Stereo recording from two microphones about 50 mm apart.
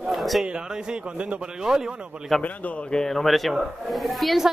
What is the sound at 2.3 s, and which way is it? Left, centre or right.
Speech, centre.